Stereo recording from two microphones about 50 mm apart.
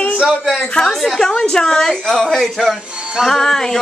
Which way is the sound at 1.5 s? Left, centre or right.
Centre.